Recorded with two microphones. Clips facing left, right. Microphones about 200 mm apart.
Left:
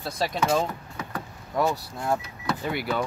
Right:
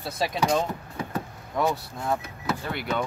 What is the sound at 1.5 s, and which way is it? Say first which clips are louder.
Speech: left 1 dB; centre (ahead or behind).